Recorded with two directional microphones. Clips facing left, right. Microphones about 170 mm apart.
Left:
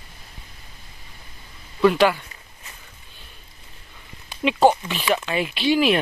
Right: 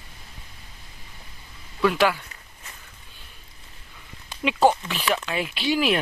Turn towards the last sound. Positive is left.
turn(degrees=0)  # may be behind; listen again after turning